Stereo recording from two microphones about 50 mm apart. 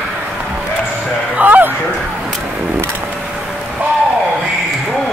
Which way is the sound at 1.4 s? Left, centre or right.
Right.